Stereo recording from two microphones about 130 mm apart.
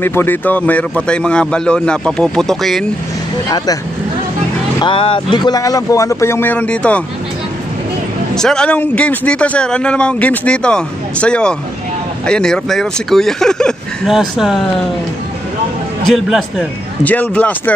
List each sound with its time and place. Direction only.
0.0 s speech: 15° left (ahead or behind)
3.4 s speech: 30° left (ahead or behind)
4.7 s speech: 40° left (ahead or behind); by 7.0 s 10° left (ahead or behind)
8.4 s speech: 5° left (ahead or behind)
16.1 s speech: centre (ahead or behind)
17.0 s speech: 10° left (ahead or behind)